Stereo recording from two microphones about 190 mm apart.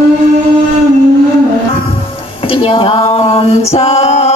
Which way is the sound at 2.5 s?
25° left (ahead or behind).